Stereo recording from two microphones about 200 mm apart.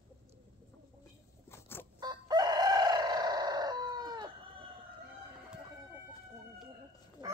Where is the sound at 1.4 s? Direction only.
10° left (ahead or behind).